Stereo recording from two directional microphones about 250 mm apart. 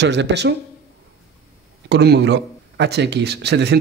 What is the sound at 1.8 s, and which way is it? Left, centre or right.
Speech, right.